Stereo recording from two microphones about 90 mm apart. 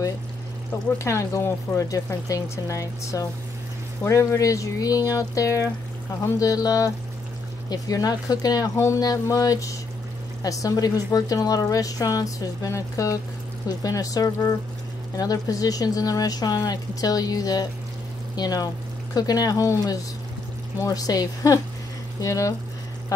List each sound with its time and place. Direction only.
0.9 s speech: 35° left (ahead or behind)